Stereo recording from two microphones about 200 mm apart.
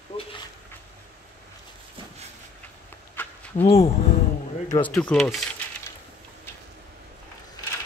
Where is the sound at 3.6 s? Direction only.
30° left (ahead or behind).